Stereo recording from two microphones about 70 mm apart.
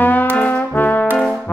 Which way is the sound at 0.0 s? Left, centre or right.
Left.